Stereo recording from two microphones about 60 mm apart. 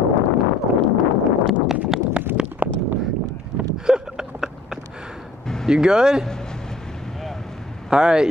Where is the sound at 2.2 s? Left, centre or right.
Centre.